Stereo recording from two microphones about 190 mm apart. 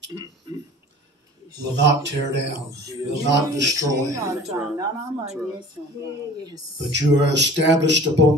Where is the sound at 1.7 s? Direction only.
65° right (ahead or behind).